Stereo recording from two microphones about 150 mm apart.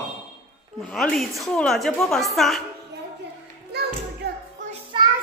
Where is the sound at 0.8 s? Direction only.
5° left (ahead or behind).